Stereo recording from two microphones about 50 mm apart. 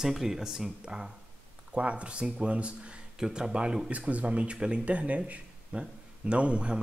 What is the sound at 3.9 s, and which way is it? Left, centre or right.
Speech, right.